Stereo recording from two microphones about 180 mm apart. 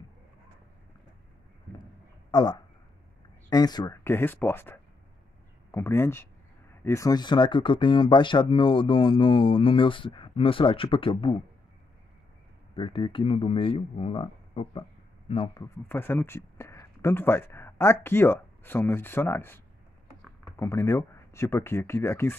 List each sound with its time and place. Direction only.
3.4 s speech: 20° left (ahead or behind)
12.7 s speech: 30° left (ahead or behind)
15.6 s speech: 10° left (ahead or behind)